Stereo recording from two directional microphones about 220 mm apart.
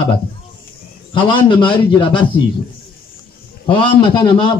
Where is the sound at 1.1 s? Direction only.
20° left (ahead or behind).